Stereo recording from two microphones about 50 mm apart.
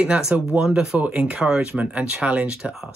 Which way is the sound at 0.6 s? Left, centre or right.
Centre.